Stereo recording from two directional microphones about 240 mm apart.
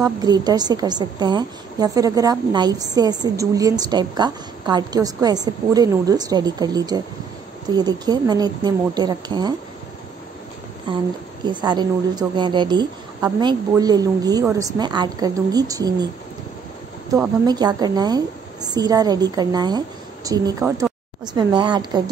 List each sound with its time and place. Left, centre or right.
0.0 s a woman's voice: centre
10.9 s a woman's voice: centre
17.1 s a woman's voice: centre